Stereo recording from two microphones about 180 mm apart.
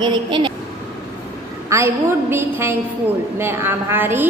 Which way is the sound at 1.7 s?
15° right (ahead or behind).